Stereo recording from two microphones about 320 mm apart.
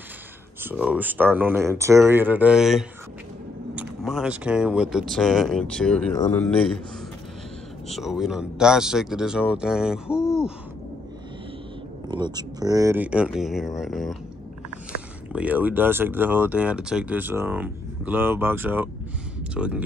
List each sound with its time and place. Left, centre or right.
0.6 s speech: centre
7.9 s speech: centre
12.1 s speech: centre
14.9 s a sound: left
15.3 s speech: centre